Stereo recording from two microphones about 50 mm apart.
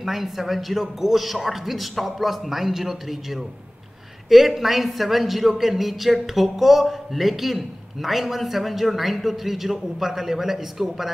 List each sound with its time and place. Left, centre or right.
0.0 s a man's voice: centre